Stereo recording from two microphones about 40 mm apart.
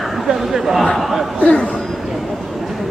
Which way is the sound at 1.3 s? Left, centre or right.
Left.